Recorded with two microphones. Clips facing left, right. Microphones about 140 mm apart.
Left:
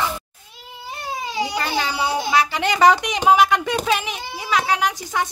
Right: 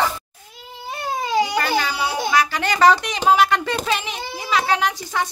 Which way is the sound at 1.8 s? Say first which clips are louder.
Left 1 dB; 25° left (ahead or behind).